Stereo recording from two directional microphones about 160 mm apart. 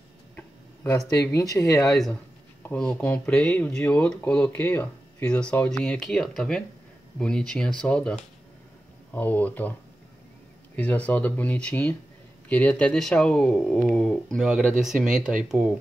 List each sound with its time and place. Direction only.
1.1 s speech: 20° left (ahead or behind)
2.6 s speech: 10° left (ahead or behind)
10.8 s speech: 10° left (ahead or behind)